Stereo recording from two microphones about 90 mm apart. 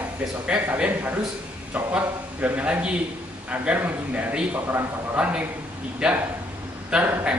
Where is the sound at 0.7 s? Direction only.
15° right (ahead or behind).